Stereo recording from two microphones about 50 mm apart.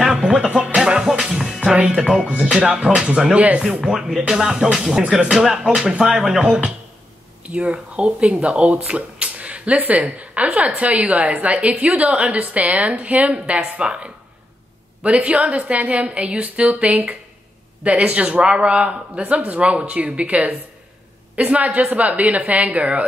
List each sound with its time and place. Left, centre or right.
0.0 s music: centre
2.1 s speech: centre
3.8 s speech: centre
4.3 s music: centre
6.4 s speech: centre